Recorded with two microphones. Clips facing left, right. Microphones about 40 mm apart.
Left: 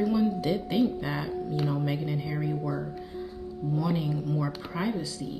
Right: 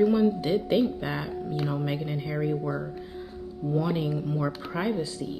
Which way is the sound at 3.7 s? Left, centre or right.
Right.